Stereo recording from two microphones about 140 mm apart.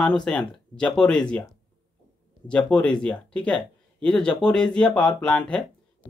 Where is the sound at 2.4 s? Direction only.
5° left (ahead or behind).